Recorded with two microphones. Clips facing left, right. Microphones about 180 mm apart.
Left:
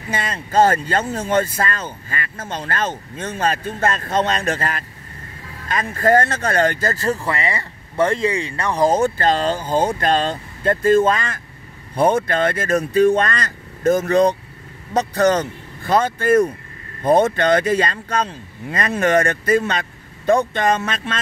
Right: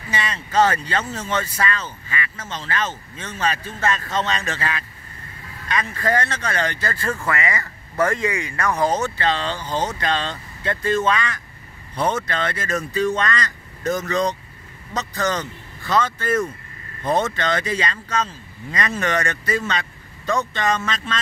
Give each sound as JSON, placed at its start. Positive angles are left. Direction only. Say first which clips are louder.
{"t": 0.1, "sound": "speech", "louder": "left 3 dB", "side_deg": 50}
{"t": 5.7, "sound": "speech", "louder": "left 6 dB", "side_deg": 45}
{"t": 8.8, "sound": "speech", "louder": "left 7 dB", "side_deg": 50}